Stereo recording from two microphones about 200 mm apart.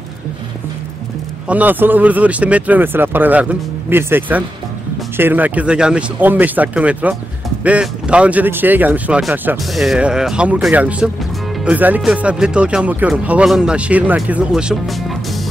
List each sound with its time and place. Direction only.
1.5 s speech: 10° right (ahead or behind)